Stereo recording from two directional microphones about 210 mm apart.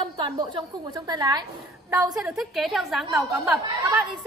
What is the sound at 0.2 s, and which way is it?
A woman's voice, 20° right (ahead or behind).